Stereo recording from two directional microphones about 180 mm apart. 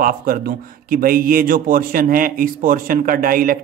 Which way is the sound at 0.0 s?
55° right (ahead or behind).